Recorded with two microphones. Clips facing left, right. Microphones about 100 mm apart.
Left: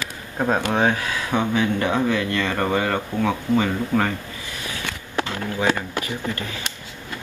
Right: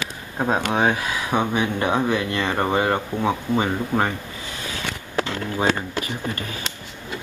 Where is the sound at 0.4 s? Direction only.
15° right (ahead or behind).